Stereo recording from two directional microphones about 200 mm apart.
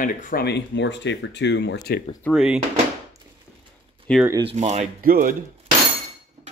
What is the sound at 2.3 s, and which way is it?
Speech, 5° right (ahead or behind).